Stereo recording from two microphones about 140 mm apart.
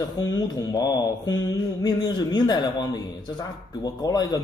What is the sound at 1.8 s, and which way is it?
Speech, 30° left (ahead or behind).